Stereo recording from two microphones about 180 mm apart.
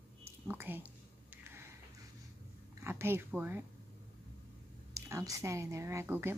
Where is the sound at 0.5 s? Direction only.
10° right (ahead or behind).